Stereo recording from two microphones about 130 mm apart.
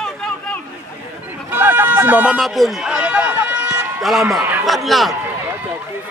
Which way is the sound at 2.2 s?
5° right (ahead or behind).